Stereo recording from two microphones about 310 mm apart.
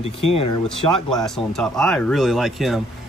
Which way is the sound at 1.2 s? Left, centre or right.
Centre.